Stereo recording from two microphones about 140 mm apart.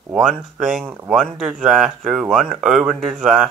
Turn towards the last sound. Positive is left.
turn(degrees=-5)  # may be behind; listen again after turning